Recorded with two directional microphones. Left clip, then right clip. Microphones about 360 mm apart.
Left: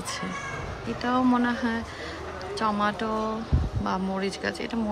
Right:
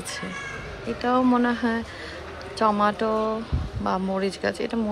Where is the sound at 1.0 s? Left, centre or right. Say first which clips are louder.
Right 3 dB; centre.